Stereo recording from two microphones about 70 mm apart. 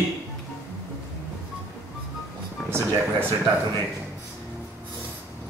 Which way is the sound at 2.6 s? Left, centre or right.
Right.